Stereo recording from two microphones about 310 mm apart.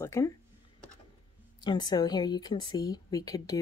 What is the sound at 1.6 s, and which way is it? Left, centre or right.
Speech, centre.